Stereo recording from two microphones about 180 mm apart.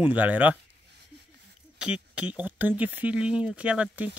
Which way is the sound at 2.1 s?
10° right (ahead or behind).